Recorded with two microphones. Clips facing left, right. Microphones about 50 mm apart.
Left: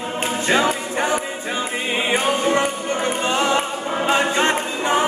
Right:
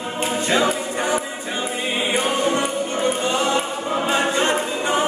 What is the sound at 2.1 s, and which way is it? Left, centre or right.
Music, left.